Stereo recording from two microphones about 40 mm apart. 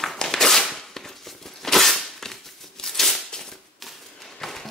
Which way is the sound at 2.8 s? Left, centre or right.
Centre.